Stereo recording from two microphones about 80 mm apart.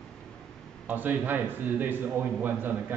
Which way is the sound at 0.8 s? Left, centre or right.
Right.